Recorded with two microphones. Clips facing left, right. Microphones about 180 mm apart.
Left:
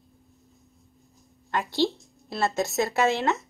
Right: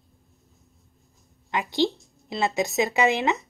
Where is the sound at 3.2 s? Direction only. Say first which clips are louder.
Right 1 dB; centre (ahead or behind).